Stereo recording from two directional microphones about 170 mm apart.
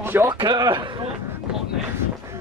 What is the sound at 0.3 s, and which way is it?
Speech, 25° right (ahead or behind).